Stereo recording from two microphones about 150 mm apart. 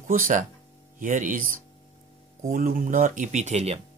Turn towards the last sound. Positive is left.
turn(degrees=-45)  # may be behind; listen again after turning